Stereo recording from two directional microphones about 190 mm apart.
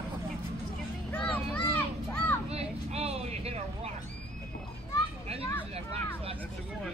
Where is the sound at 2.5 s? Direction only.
35° right (ahead or behind).